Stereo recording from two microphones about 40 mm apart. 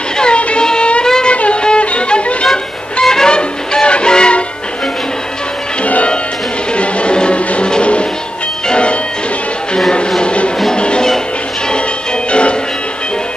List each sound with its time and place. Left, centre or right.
0.2 s music: left
1.0 s music: centre
1.3 s violin: left
2.5 s music: centre
6.7 s music: left
10.2 s music: left
12.3 s music: left